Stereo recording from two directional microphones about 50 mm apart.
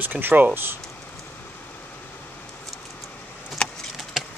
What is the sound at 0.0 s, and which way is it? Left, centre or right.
Speech, right.